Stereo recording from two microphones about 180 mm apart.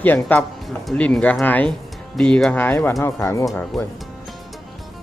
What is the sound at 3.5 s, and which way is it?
Speech, centre (ahead or behind).